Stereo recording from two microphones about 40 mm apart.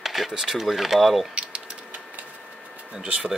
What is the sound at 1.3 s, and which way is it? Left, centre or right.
Typewriter, right.